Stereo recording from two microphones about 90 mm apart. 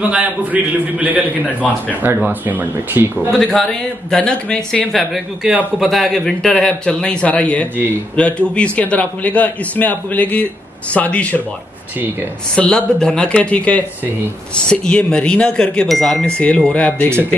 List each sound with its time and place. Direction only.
0.0 s a man's voice: 15° right (ahead or behind)
3.3 s a man's voice: 5° left (ahead or behind)
12.5 s a man's voice: 10° left (ahead or behind)